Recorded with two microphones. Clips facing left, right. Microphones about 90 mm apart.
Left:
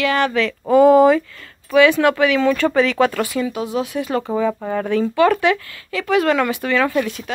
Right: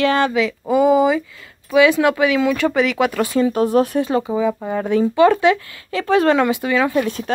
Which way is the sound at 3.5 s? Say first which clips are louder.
Right 7 dB; 45° right (ahead or behind).